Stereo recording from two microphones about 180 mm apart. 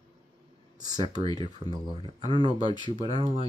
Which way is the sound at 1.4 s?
25° right (ahead or behind).